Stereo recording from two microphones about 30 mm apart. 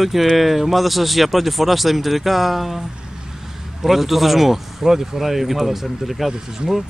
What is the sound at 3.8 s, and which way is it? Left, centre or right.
Speech, centre.